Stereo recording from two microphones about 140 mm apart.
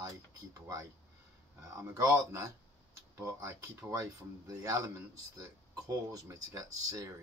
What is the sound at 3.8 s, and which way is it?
Speech, 25° right (ahead or behind).